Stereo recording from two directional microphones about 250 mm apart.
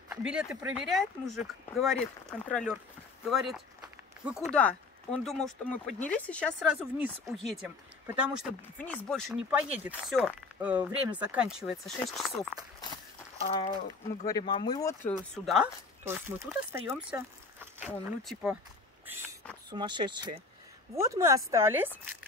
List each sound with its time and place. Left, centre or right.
0.1 s speech: centre
12.8 s speech: left
15.1 s speech: centre
19.7 s speech: centre